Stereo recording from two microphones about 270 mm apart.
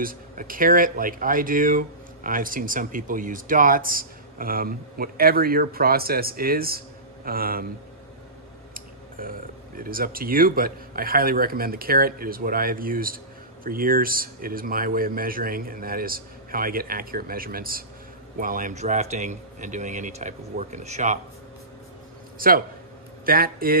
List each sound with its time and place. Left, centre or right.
0.0 s speech: right
9.2 s speech: right
22.4 s speech: right